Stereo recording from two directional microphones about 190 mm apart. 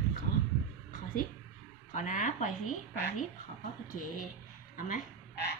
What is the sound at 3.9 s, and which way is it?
Speech, 45° left (ahead or behind).